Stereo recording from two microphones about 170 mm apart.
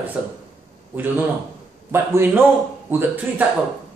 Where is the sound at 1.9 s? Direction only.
15° right (ahead or behind).